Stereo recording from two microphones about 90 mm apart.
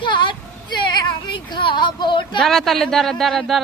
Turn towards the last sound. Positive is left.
turn(degrees=0)  # may be behind; listen again after turning